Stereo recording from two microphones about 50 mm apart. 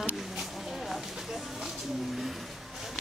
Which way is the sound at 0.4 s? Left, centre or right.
Centre.